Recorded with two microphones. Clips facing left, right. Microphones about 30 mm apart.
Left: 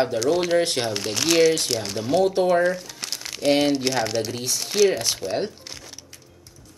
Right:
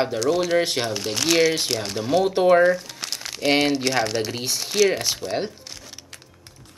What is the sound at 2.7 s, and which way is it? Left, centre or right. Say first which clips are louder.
Crumpling: right 4 dB; centre.